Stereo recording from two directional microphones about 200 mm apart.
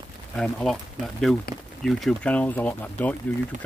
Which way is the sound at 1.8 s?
Centre (ahead or behind).